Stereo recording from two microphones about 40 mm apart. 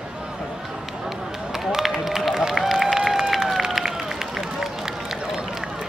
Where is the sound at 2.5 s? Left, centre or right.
Centre.